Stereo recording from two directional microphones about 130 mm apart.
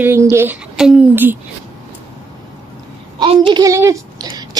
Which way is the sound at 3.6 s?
25° right (ahead or behind).